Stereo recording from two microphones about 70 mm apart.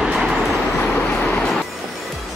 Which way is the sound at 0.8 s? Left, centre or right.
Centre.